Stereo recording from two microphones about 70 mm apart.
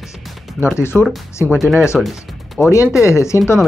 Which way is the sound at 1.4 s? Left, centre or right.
Right.